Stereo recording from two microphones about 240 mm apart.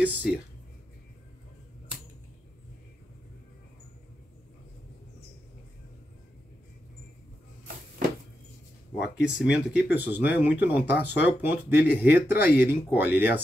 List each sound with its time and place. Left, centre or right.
0.0 s speech: centre
9.0 s speech: centre